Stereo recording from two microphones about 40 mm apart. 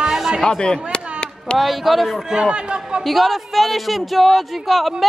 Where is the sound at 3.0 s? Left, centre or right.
Centre.